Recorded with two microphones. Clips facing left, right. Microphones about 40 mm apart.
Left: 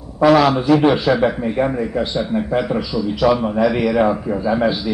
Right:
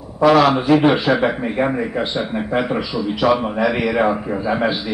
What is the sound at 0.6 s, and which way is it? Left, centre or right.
A man's voice, right.